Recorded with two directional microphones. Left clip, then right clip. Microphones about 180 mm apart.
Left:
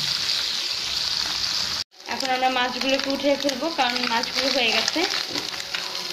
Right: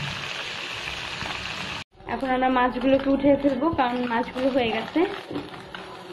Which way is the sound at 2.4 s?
10° left (ahead or behind).